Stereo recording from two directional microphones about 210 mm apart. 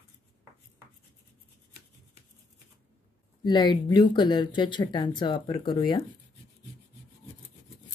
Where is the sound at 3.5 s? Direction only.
20° left (ahead or behind).